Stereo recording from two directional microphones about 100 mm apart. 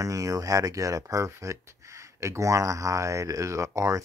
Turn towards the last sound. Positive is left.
turn(degrees=-30)  # may be behind; listen again after turning